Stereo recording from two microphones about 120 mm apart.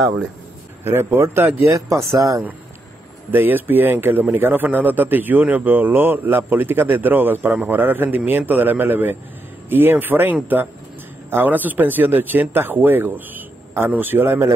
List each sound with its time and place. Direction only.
0.8 s speech: 20° right (ahead or behind)
3.3 s a man's voice: 15° right (ahead or behind)